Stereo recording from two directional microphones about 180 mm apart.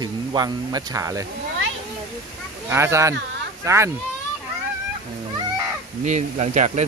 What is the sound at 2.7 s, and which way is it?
Speech, 15° right (ahead or behind).